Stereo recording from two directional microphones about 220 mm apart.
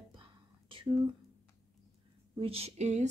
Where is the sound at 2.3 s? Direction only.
25° right (ahead or behind).